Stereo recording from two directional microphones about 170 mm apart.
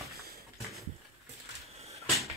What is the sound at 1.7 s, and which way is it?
Cupboard open or close, 40° right (ahead or behind).